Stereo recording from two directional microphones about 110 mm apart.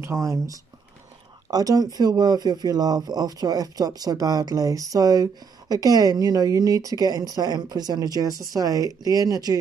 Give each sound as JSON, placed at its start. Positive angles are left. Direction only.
{"t": 0.0, "sound": "speech", "side_deg": -25}